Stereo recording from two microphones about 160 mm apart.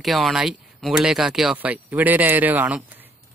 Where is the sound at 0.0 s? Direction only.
Centre (ahead or behind).